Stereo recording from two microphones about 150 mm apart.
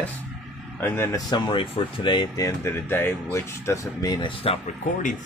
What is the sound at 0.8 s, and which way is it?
Speech, 20° left (ahead or behind).